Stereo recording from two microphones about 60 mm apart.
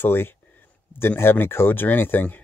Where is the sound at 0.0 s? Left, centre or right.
Left.